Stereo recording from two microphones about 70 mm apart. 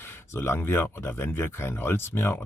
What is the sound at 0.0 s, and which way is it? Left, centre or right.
Speech, left.